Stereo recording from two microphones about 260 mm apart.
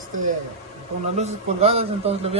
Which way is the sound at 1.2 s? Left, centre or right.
Right.